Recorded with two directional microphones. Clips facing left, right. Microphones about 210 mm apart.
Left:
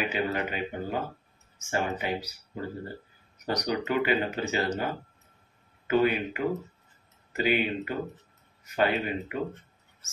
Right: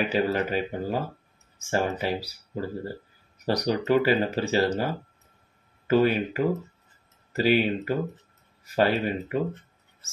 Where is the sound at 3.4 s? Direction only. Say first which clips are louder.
Right 4 dB; 35° right (ahead or behind).